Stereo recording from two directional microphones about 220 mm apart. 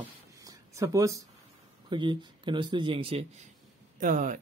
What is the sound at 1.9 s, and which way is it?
Speech, 20° right (ahead or behind).